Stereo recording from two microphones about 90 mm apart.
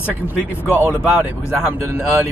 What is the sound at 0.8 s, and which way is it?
Speech, 15° right (ahead or behind).